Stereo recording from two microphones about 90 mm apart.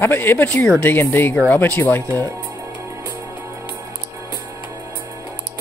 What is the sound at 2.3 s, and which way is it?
Music, 30° right (ahead or behind).